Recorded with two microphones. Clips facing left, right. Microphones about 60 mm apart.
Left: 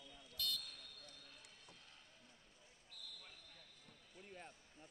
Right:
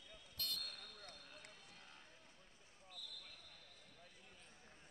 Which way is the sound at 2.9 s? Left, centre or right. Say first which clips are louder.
Right 2 dB; left.